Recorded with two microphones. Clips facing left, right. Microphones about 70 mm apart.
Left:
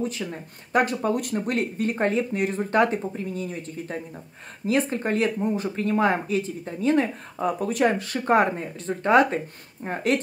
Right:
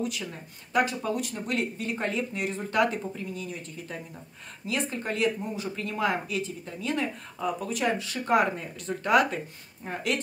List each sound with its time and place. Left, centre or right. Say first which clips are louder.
0.3 s speech: left 5 dB; left